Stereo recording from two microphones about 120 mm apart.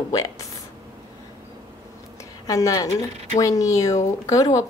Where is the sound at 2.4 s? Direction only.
30° left (ahead or behind).